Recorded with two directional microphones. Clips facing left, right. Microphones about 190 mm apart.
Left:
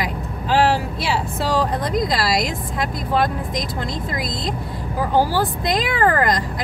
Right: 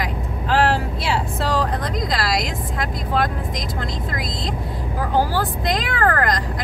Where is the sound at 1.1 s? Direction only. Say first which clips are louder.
Even; 5° left (ahead or behind).